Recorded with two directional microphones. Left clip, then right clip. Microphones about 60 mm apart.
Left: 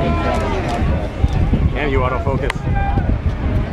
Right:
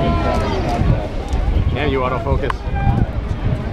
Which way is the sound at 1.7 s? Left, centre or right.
Centre.